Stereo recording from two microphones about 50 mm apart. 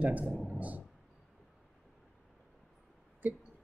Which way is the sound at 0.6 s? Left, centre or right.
Right.